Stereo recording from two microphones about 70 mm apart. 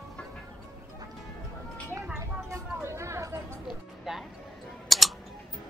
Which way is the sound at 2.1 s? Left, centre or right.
Right.